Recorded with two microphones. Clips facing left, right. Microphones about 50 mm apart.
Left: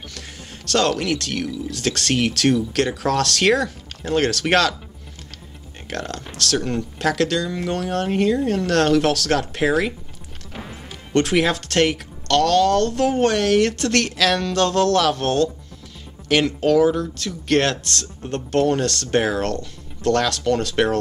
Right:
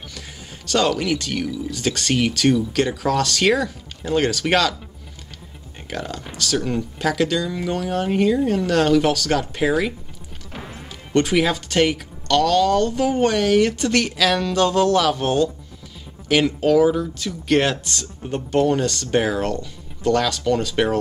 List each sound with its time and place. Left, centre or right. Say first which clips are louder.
0.7 s speech: even; centre
5.9 s speech: even; centre